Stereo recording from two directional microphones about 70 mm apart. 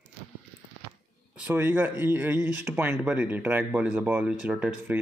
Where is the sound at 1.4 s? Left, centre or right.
Right.